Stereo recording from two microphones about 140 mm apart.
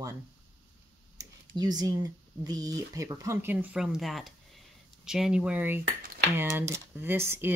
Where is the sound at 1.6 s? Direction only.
30° right (ahead or behind).